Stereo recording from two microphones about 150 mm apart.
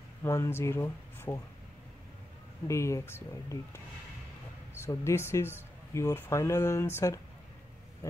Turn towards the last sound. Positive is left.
turn(degrees=15)  # may be behind; listen again after turning